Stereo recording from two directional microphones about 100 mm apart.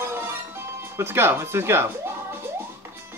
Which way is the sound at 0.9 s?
25° right (ahead or behind).